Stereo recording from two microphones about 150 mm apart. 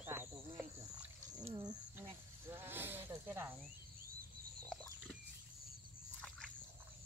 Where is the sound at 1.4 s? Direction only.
25° right (ahead or behind).